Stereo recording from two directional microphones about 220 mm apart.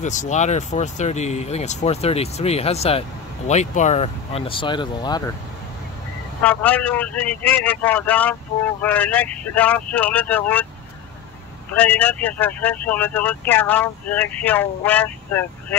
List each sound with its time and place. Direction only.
0.0 s speech: 35° left (ahead or behind); by 5.3 s 20° left (ahead or behind)
6.4 s speech: 10° left (ahead or behind)
11.7 s speech: 5° left (ahead or behind)